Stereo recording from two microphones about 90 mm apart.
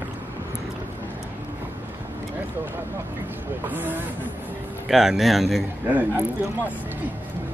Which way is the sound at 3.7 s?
20° right (ahead or behind).